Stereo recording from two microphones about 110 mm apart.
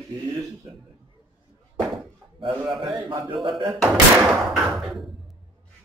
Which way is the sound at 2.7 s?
Centre (ahead or behind).